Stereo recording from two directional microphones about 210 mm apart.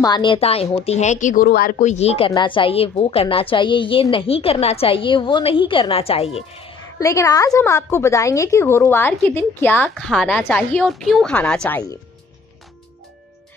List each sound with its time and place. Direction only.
0.0 s speech: 20° left (ahead or behind)
7.0 s a woman's voice: 15° left (ahead or behind)